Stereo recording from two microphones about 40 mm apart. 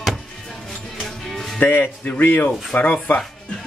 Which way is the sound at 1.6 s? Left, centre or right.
Left.